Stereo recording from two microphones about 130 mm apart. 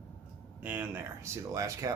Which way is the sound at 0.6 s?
15° right (ahead or behind).